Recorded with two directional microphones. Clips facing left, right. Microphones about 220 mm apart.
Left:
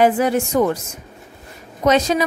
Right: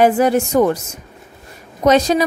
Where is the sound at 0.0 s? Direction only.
45° right (ahead or behind).